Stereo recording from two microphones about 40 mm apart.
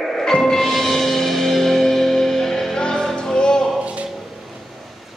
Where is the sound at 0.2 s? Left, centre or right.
Centre.